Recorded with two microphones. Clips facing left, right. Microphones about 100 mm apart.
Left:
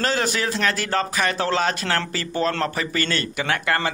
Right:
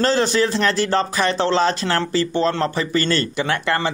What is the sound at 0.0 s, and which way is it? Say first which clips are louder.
Speech: right 5 dB; 30° right (ahead or behind).